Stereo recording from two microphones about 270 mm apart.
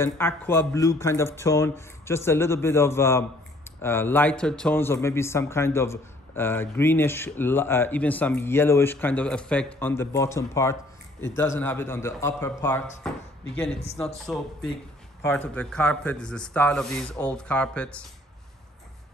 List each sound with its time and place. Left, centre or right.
0.0 s a man's voice: centre